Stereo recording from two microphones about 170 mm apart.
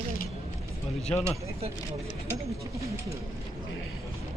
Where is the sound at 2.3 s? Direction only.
15° right (ahead or behind).